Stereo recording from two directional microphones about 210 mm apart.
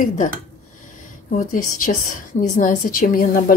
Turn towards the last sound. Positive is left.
turn(degrees=40)  # may be behind; listen again after turning